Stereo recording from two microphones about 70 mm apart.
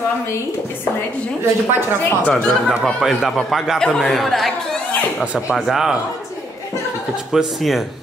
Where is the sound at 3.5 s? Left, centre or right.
Centre.